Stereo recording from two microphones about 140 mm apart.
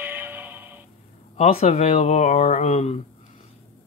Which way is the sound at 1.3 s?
50° left (ahead or behind).